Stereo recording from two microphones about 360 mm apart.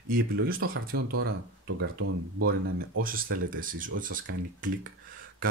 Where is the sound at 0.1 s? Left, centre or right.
Right.